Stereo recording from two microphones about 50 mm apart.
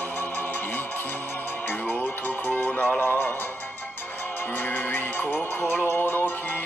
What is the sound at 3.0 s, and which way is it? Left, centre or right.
Music, left.